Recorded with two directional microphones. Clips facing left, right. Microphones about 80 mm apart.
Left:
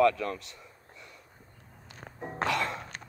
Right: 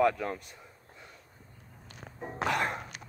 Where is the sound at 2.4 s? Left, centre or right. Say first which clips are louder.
Right 1 dB; left.